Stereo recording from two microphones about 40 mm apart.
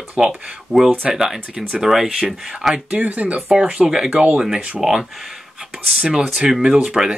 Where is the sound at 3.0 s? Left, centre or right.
Right.